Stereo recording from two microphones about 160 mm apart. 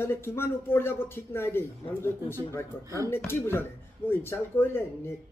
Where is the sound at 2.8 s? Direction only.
20° right (ahead or behind).